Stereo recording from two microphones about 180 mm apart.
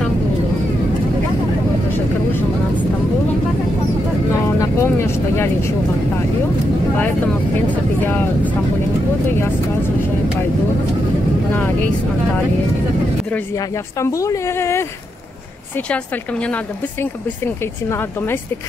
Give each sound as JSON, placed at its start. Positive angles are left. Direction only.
{"t": 4.3, "sound": "vehicle", "side_deg": 15}
{"t": 7.7, "sound": "vehicle", "side_deg": 10}
{"t": 13.9, "sound": "a woman's voice", "side_deg": 15}
{"t": 17.8, "sound": "a woman's voice", "side_deg": 15}